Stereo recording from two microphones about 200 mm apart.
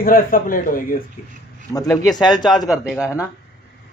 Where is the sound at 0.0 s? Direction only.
45° left (ahead or behind).